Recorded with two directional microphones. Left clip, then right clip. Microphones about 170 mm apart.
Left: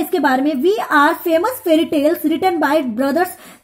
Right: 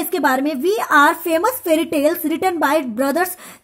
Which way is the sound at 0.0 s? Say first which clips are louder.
Left 2 dB; 35° right (ahead or behind).